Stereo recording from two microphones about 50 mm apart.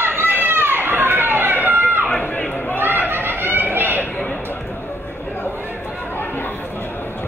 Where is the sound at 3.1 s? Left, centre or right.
Right.